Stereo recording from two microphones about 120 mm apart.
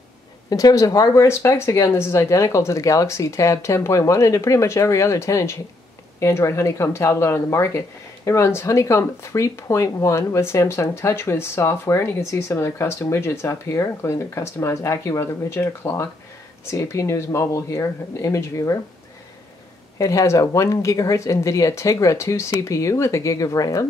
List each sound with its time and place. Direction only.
0.5 s speech: 30° left (ahead or behind)
20.0 s speech: 25° left (ahead or behind)